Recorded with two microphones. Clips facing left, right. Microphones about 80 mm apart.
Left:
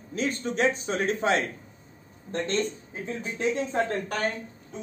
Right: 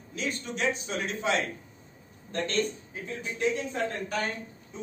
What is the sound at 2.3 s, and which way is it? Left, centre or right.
Speech, left.